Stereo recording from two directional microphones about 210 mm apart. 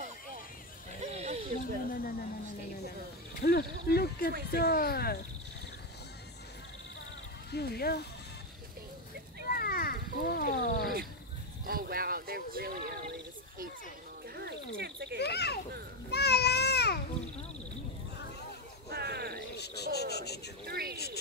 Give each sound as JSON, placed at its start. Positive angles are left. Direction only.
{"t": 1.0, "sound": "snake", "side_deg": -30}
{"t": 1.6, "sound": "speech", "side_deg": 45}
{"t": 3.3, "sound": "speech", "side_deg": 50}
{"t": 7.5, "sound": "speech", "side_deg": 50}
{"t": 9.5, "sound": "cat", "side_deg": 45}
{"t": 11.6, "sound": "a sound", "side_deg": -45}
{"t": 14.3, "sound": "cricket", "side_deg": -50}
{"t": 15.1, "sound": "a sound", "side_deg": 50}
{"t": 18.9, "sound": "frog", "side_deg": -50}
{"t": 19.5, "sound": "cricket", "side_deg": 50}
{"t": 20.6, "sound": "a sound", "side_deg": -45}